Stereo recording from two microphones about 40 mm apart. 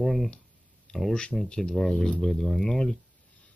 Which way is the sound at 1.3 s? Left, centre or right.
Centre.